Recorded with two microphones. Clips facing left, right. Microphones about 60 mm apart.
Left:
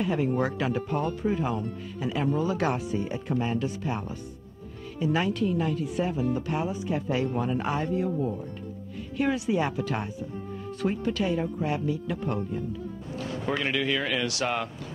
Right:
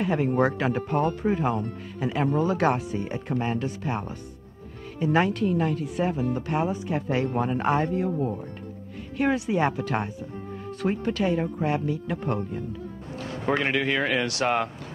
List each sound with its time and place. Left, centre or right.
0.0 s speech: right
5.0 s speech: right